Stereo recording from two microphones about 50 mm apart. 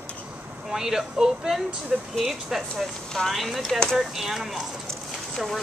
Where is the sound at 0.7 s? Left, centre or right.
Centre.